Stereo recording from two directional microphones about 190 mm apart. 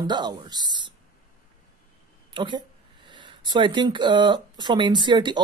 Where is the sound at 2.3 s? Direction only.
25° right (ahead or behind).